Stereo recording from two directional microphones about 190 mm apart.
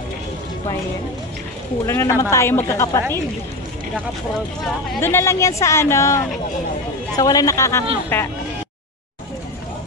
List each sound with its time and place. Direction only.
1.9 s speech: 15° left (ahead or behind)
5.0 s speech: 15° left (ahead or behind)